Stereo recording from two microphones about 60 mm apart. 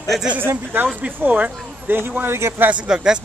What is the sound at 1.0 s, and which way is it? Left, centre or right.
Speech, right.